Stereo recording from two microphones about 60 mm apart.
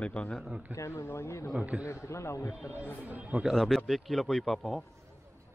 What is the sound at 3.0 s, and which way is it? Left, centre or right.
Speech, right.